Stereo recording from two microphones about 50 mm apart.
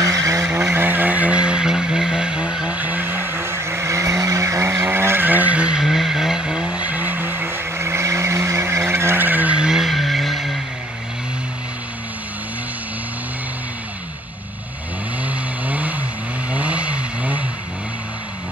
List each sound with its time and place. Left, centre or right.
0.0 s vehicle: right
0.7 s vehicle: right; by 2.8 s centre
2.8 s vehicle: right
3.4 s vehicle: right
4.8 s vehicle: right
5.6 s vehicle: right
5.9 s vehicle: centre
6.8 s vehicle: right
7.7 s vehicle: right
9.2 s skidding: right
9.6 s vehicle: centre
15.2 s vehicle: right